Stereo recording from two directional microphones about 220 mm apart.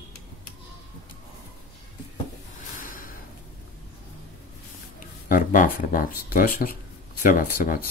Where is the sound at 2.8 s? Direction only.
40° left (ahead or behind).